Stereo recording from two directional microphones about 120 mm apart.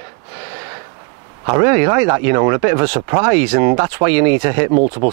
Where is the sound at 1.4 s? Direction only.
25° right (ahead or behind).